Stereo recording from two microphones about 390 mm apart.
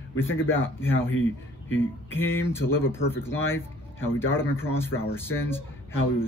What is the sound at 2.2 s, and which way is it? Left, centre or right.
Speech, centre.